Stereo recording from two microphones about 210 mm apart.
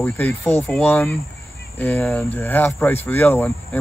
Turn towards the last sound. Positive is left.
turn(degrees=10)  # may be behind; listen again after turning